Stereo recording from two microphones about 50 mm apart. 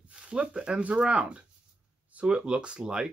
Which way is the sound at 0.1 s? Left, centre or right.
Right.